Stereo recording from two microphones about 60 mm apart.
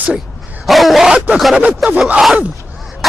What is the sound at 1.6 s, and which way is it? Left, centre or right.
Wail, right.